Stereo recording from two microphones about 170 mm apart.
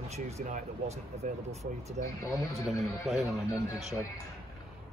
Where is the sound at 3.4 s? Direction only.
20° left (ahead or behind).